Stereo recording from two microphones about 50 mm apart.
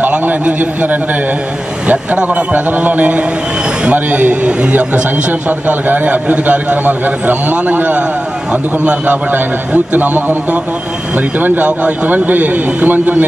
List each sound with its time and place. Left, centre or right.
0.0 s a man's voice: right
2.2 s a man's voice: right
5.7 s a man's voice: right
9.3 s a man's voice: right